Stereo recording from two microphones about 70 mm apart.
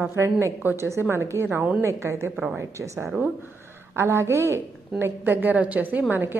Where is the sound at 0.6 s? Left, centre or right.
Right.